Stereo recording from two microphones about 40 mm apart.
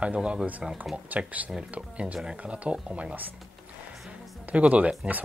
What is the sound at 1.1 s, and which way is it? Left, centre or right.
Speech, right.